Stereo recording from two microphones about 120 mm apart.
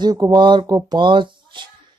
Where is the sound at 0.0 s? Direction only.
35° right (ahead or behind).